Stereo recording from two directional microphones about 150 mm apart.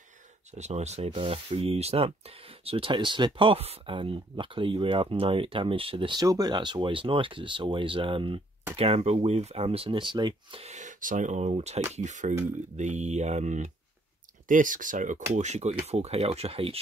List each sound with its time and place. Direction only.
0.6 s speech: 50° right (ahead or behind); by 10.6 s 30° right (ahead or behind)
10.6 s speech: 50° right (ahead or behind)
14.5 s speech: 60° right (ahead or behind)
15.3 s speech: 50° right (ahead or behind)